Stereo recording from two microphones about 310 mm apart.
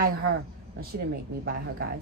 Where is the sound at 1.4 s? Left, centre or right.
Right.